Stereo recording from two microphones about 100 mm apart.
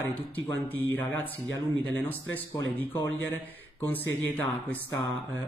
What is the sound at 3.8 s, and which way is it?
Speech, 20° left (ahead or behind).